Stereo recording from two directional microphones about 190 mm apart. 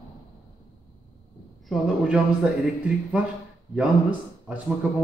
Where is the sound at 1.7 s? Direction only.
5° right (ahead or behind).